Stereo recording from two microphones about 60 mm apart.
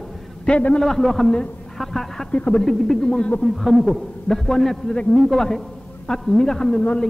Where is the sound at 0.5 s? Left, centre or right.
Left.